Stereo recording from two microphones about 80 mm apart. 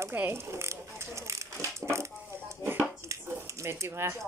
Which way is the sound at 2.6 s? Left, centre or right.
Right.